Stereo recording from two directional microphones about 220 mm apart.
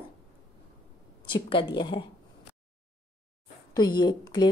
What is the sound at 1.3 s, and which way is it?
Speech, 20° left (ahead or behind).